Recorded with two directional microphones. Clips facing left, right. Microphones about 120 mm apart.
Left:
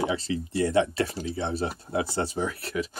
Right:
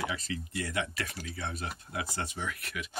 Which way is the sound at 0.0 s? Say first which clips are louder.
Left 8 dB; 30° left (ahead or behind).